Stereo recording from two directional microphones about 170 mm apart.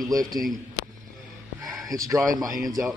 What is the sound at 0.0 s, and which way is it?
Speech, 20° right (ahead or behind).